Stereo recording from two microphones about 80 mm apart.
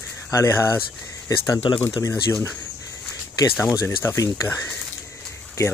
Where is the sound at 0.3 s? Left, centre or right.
Left.